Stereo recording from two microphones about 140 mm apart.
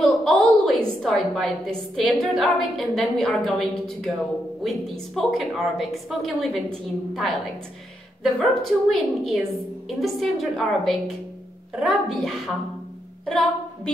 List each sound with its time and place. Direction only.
0.0 s a woman's voice: 5° left (ahead or behind)